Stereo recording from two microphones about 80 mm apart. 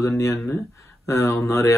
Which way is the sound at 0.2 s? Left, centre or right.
Left.